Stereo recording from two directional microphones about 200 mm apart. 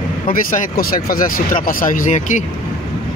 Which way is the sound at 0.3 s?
45° left (ahead or behind).